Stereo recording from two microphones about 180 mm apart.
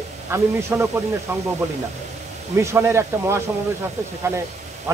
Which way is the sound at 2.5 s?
15° right (ahead or behind).